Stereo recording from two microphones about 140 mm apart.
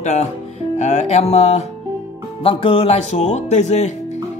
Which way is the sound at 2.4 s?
40° left (ahead or behind).